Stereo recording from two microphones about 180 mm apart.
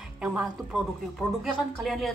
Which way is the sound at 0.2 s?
5° right (ahead or behind).